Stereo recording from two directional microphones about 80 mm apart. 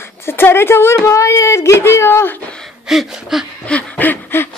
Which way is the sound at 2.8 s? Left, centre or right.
Centre.